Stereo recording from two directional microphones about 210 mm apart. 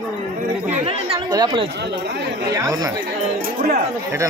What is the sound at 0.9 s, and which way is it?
Speech, 25° right (ahead or behind).